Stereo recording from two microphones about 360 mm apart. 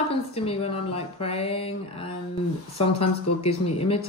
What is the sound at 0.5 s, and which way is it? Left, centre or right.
Speech, centre.